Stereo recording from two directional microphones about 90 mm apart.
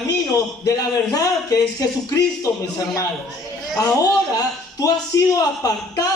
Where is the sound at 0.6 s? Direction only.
45° left (ahead or behind).